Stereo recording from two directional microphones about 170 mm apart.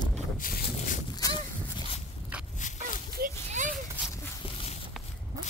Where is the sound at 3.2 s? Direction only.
60° right (ahead or behind).